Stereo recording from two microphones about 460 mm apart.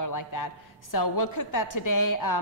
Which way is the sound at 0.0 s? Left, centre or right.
Left.